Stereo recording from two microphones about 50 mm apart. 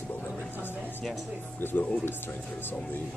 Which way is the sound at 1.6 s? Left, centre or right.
Left.